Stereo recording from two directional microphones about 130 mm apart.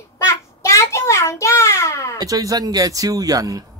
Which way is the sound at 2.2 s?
30° right (ahead or behind).